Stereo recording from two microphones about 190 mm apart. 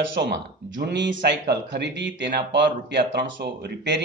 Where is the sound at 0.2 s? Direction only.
65° right (ahead or behind).